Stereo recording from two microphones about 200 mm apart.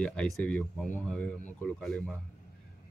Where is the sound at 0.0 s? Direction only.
5° left (ahead or behind).